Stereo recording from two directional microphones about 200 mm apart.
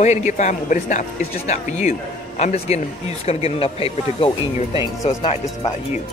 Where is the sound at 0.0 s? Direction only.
35° left (ahead or behind).